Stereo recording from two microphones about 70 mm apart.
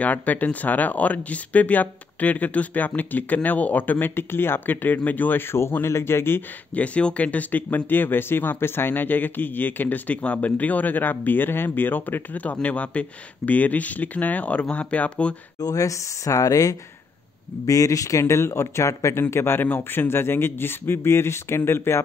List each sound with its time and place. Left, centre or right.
0.0 s speech: left
6.7 s speech: centre
15.6 s a man's voice: left
19.3 s a man's voice: left